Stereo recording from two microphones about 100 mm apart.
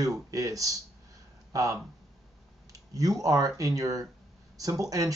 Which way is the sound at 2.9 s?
35° right (ahead or behind).